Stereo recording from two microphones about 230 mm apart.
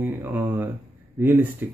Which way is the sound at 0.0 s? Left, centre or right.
Centre.